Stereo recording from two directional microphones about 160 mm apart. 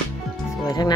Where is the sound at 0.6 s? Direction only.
25° left (ahead or behind).